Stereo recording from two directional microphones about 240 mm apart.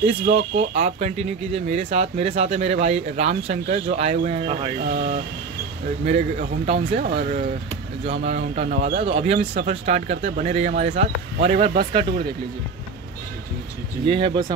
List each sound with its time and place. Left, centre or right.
0.0 s speech: right
9.0 s speech: right
14.0 s speech: right